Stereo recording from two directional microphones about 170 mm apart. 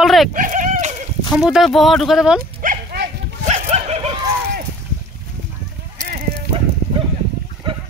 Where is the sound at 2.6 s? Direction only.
70° right (ahead or behind).